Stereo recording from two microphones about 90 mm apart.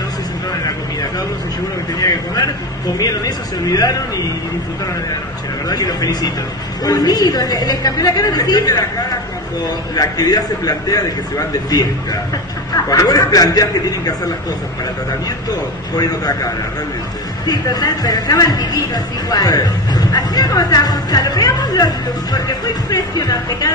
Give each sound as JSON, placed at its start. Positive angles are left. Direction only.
{"t": 2.0, "sound": "speech", "side_deg": 45}
{"t": 5.7, "sound": "speech", "side_deg": 45}
{"t": 9.9, "sound": "speech", "side_deg": 45}
{"t": 12.9, "sound": "speech", "side_deg": 40}
{"t": 17.5, "sound": "speech", "side_deg": 45}